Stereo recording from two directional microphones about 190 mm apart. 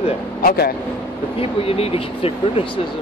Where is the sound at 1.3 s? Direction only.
30° left (ahead or behind).